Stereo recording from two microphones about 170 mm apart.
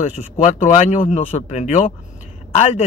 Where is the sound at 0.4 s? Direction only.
45° left (ahead or behind).